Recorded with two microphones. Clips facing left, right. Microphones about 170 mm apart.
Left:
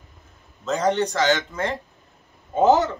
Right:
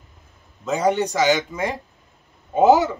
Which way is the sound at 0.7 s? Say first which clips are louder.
Right 1 dB; 10° right (ahead or behind).